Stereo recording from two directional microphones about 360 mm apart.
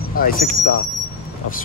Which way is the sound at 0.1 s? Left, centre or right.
Left.